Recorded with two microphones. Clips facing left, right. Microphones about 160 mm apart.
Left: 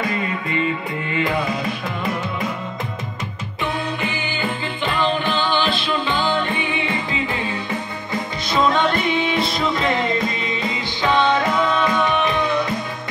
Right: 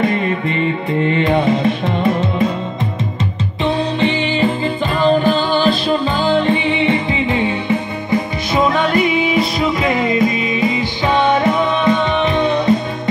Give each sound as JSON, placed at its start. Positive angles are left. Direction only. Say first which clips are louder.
{"t": 0.0, "sound": "music", "louder": "right 7 dB", "side_deg": -25}
{"t": 3.6, "sound": "music", "louder": "right 8 dB", "side_deg": -30}
{"t": 4.9, "sound": "music", "louder": "right 8 dB", "side_deg": -40}
{"t": 8.5, "sound": "music", "louder": "right 4 dB", "side_deg": -10}